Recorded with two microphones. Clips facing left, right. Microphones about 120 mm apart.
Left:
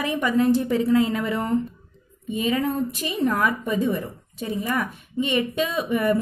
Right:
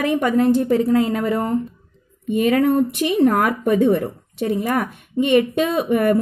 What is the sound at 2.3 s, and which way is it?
A woman's voice, 65° right (ahead or behind).